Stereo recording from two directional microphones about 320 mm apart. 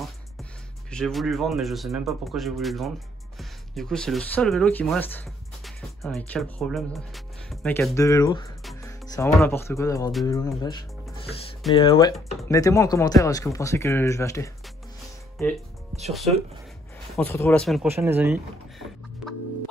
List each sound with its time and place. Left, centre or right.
0.0 s speech: centre
16.1 s speech: centre